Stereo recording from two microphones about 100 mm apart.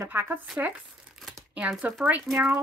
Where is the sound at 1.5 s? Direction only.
10° right (ahead or behind).